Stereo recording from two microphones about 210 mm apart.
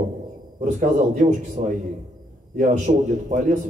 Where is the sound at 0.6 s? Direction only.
35° right (ahead or behind).